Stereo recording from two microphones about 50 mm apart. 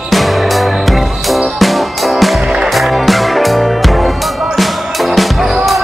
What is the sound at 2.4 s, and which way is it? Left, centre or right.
Music, centre.